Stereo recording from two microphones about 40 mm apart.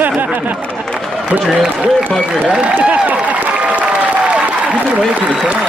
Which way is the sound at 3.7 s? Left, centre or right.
Right.